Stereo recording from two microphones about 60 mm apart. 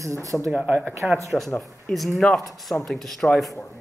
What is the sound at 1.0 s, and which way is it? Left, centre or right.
Speech, centre.